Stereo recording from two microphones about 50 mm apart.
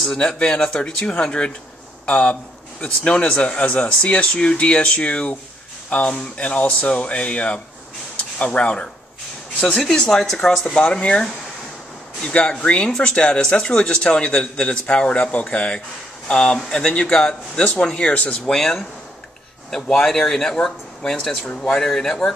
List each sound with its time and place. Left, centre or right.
0.0 s a man's voice: centre
10.7 s a man's voice: centre
18.5 s a man's voice: centre